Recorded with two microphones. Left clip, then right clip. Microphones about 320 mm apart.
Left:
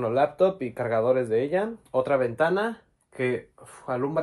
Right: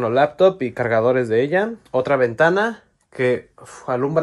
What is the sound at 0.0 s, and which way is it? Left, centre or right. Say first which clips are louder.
Speech: right 7 dB; right.